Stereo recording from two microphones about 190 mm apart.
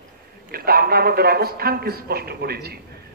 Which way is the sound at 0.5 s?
55° right (ahead or behind).